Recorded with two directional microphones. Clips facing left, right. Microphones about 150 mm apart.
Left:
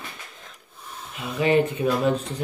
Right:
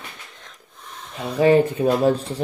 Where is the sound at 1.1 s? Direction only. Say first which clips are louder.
Right 5 dB; 35° right (ahead or behind).